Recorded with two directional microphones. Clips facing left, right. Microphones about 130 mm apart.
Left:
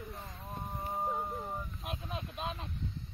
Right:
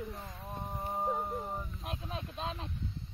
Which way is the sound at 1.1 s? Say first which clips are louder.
Right 2 dB; 5° right (ahead or behind).